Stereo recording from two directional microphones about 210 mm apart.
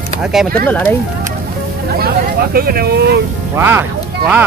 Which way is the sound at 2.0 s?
45° right (ahead or behind).